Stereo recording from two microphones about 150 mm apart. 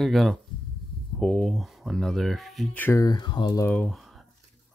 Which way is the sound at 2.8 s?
15° left (ahead or behind).